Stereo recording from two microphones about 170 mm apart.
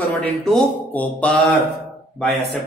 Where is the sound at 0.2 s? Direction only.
Centre (ahead or behind).